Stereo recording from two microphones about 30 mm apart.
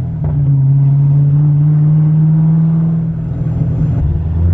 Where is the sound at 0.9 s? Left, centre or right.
Left.